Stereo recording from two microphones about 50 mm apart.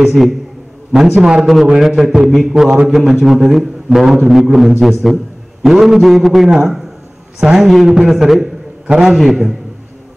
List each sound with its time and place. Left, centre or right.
0.0 s a man's voice: centre
1.1 s a man's voice: centre
1.4 s a man's voice: centre
8.8 s a man's voice: centre
9.1 s a man's voice: centre